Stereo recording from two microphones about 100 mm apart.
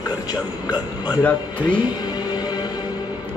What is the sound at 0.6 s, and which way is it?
Speech, 45° left (ahead or behind).